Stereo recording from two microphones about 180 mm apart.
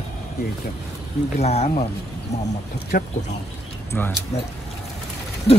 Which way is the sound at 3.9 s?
10° left (ahead or behind).